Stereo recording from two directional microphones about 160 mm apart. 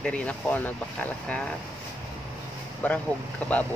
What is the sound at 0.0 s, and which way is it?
Speech, 5° left (ahead or behind).